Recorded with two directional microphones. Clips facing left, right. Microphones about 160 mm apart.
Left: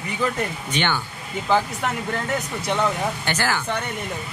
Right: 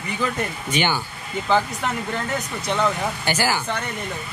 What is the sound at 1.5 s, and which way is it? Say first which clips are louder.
Speech: even; 5° left (ahead or behind).